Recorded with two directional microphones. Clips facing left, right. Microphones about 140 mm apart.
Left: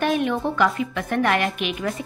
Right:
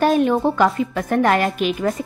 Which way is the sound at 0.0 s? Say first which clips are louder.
Right 6 dB; 35° right (ahead or behind).